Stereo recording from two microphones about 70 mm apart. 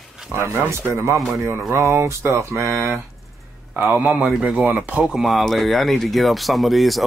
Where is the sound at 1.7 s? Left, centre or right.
Right.